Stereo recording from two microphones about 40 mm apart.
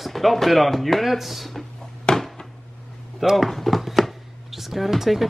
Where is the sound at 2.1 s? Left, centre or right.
Left.